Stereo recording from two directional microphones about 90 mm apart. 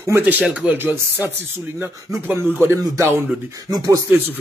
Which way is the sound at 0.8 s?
25° right (ahead or behind).